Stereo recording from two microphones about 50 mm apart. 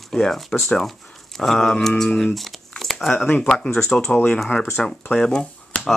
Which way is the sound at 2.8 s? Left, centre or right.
Centre.